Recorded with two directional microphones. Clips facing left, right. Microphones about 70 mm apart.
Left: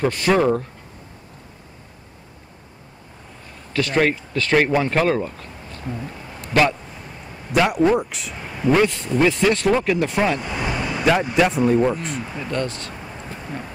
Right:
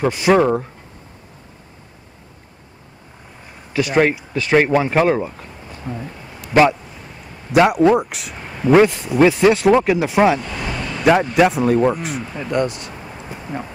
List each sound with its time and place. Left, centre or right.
0.0 s speech: centre
3.7 s speech: centre
10.4 s vehicle: centre
11.3 s speech: centre
12.4 s a sound: centre